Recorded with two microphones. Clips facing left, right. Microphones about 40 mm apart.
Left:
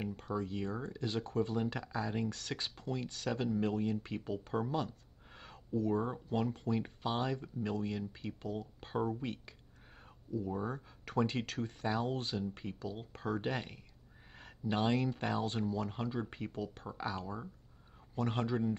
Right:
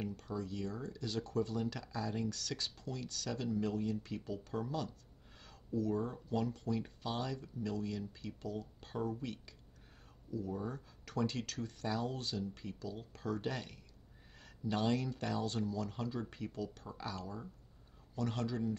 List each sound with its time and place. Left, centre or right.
0.0 s speech: left